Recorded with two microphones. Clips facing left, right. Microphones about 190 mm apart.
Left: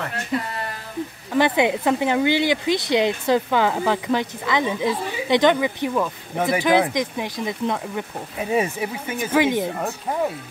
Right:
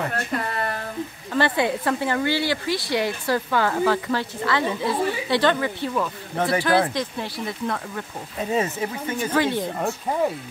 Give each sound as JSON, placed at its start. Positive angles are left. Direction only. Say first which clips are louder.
{"t": 1.3, "sound": "speech", "louder": "left 3 dB", "side_deg": 15}